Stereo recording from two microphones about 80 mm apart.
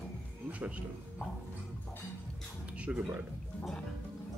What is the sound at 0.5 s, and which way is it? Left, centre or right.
Speech, centre.